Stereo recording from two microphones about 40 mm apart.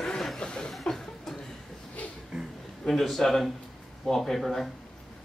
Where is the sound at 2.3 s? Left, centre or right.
Centre.